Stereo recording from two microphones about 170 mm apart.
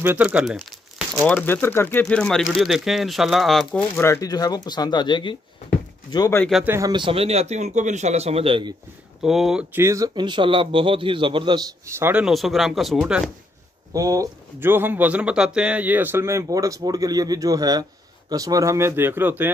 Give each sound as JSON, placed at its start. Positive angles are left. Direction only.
{"t": 0.0, "sound": "speech", "side_deg": -10}
{"t": 1.2, "sound": "speech", "side_deg": 10}
{"t": 6.6, "sound": "speech", "side_deg": -15}
{"t": 6.9, "sound": "a man's voice", "side_deg": -30}
{"t": 9.2, "sound": "speech", "side_deg": 0}
{"t": 13.9, "sound": "speech", "side_deg": -20}